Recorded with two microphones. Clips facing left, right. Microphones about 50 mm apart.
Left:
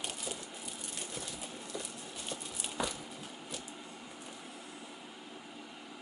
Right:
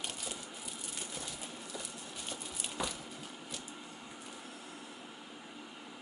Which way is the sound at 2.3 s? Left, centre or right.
Centre.